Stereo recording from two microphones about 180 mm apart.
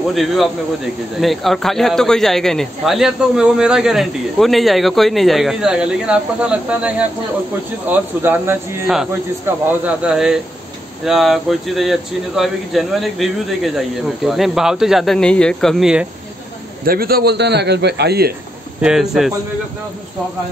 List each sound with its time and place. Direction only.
0.1 s a man's voice: centre (ahead or behind)
16.8 s a man's voice: 55° right (ahead or behind)
18.8 s a man's voice: 5° right (ahead or behind)